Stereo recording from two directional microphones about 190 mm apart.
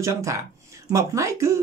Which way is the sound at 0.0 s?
15° right (ahead or behind).